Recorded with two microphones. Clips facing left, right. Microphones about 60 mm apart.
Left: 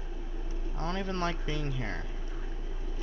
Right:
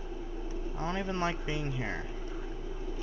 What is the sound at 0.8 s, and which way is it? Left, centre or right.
A man's voice, centre.